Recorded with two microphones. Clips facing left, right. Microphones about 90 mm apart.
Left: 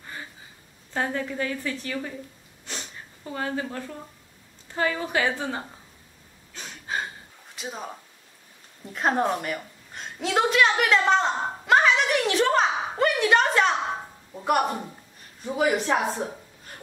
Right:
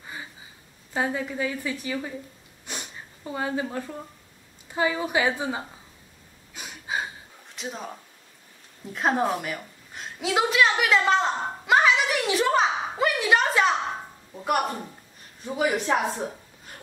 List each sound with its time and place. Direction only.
0.0 s a sound: 10° right (ahead or behind)
0.9 s a woman's voice: 10° right (ahead or behind)
2.6 s sniff: 15° right (ahead or behind)
4.7 s a woman's voice: 15° right (ahead or behind)
6.5 s gasp: 10° right (ahead or behind)
7.5 s speech: centre (ahead or behind)
8.9 s a sound: centre (ahead or behind)
15.4 s speech: centre (ahead or behind)